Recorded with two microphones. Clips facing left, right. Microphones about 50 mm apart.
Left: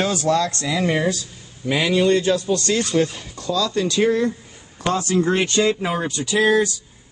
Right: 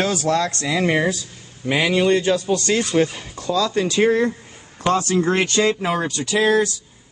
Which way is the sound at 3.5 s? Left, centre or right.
Right.